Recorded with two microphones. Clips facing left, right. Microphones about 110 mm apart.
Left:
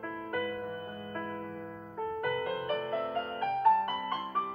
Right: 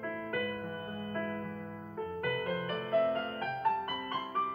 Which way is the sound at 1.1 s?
30° left (ahead or behind).